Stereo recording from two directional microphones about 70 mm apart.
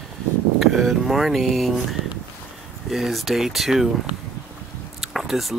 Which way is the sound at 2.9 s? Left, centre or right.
Centre.